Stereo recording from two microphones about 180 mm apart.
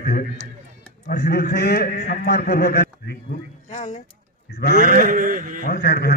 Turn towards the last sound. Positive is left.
turn(degrees=60)  # may be behind; listen again after turning